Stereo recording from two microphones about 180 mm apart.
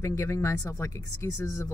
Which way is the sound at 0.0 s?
15° left (ahead or behind).